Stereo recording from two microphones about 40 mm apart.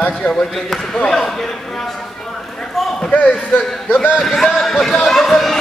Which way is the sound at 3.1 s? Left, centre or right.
Left.